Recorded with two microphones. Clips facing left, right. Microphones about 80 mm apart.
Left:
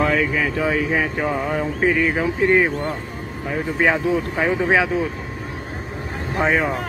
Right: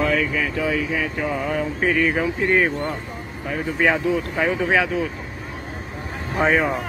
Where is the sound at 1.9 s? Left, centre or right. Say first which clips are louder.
Left 1 dB; centre.